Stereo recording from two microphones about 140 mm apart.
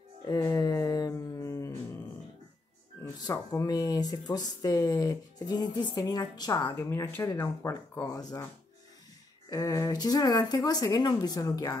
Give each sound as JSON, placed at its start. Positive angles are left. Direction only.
{"t": 0.3, "sound": "a sound", "side_deg": 25}
{"t": 3.0, "sound": "speech", "side_deg": 25}
{"t": 9.5, "sound": "speech", "side_deg": 25}